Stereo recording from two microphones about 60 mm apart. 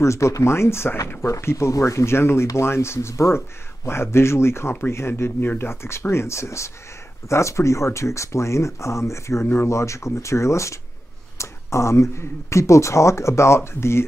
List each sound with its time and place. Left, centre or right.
0.0 s speech: left